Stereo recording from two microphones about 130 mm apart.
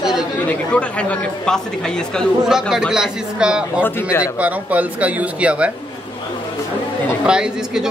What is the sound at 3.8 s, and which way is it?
Speech, 20° left (ahead or behind).